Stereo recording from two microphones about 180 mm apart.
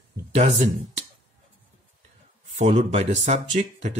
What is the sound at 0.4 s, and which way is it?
Speech, 35° right (ahead or behind).